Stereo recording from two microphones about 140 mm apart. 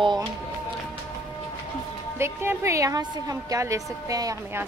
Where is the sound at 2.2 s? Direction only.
20° right (ahead or behind).